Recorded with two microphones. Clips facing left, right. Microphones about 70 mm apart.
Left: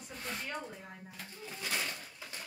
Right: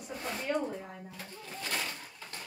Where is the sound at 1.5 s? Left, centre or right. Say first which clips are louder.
Right 1 dB; right.